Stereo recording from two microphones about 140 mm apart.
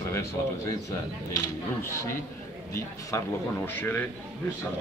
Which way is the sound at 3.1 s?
20° left (ahead or behind).